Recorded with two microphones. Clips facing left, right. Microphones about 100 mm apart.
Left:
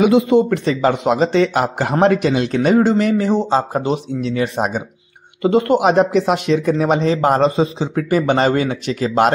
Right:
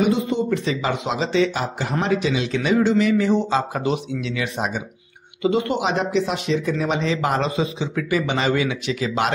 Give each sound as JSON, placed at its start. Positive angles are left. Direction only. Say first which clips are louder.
{"t": 0.0, "sound": "speech", "louder": "left 8 dB", "side_deg": 90}
{"t": 0.7, "sound": "a man's voice", "louder": "left 7 dB", "side_deg": 40}
{"t": 1.5, "sound": "a man's voice", "louder": "left 7 dB", "side_deg": 70}
{"t": 2.0, "sound": "a man's voice", "louder": "left 7 dB", "side_deg": 50}